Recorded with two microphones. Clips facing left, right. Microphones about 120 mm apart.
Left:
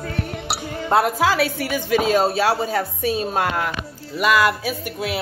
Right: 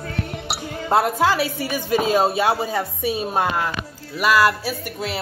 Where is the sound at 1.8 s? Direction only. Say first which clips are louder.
Left 1 dB; 40° right (ahead or behind).